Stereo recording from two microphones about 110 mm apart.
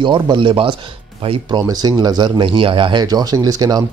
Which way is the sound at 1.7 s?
35° right (ahead or behind).